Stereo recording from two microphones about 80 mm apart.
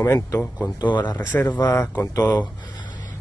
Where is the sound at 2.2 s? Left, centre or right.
Left.